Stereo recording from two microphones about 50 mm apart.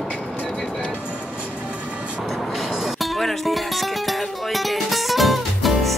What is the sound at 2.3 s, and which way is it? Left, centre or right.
Music, centre.